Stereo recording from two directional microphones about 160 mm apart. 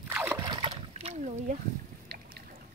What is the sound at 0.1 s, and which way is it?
Splash, 10° right (ahead or behind).